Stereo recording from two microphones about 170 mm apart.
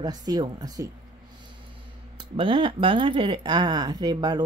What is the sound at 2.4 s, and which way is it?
Speech, 30° right (ahead or behind).